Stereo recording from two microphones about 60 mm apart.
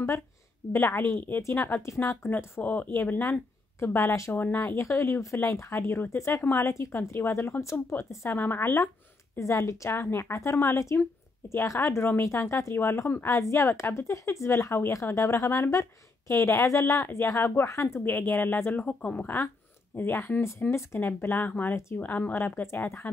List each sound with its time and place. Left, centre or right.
0.7 s a woman's voice: left
2.6 s speech: left
2.9 s a woman's voice: left
4.4 s a woman's voice: left
4.7 s speech: left
6.4 s a woman's voice: left
9.4 s speech: left
9.8 s speech: left
13.3 s speech: left
15.7 s speech: left
17.0 s speech: left
18.0 s a woman's voice: left
20.6 s a woman's voice: left